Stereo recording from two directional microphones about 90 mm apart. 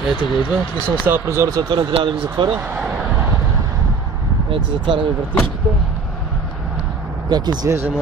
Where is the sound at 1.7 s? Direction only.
55° right (ahead or behind).